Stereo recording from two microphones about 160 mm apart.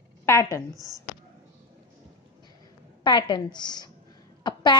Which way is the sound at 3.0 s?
30° left (ahead or behind).